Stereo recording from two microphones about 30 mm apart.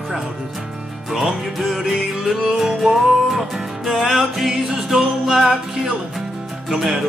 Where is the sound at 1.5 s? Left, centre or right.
Centre.